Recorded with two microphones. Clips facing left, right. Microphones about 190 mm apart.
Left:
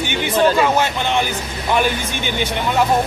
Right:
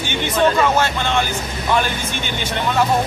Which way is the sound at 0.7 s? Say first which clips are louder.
Even; 15° left (ahead or behind).